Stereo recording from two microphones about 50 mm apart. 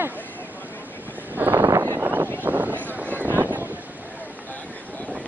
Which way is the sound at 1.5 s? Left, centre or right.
Right.